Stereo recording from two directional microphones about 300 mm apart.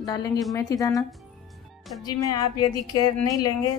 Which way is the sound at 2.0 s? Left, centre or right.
Centre.